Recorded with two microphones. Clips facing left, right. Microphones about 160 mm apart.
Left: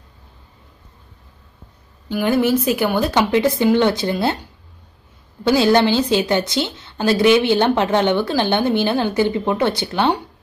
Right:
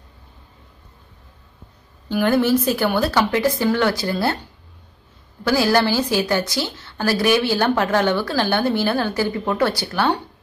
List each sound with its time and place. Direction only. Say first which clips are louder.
2.0 s a woman's voice: even; 5° left (ahead or behind)
3.0 s a woman's voice: left 2 dB; 20° left (ahead or behind)
5.4 s a woman's voice: left 3 dB; 20° left (ahead or behind)